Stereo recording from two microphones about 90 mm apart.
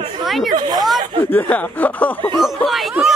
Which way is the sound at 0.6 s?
55° right (ahead or behind).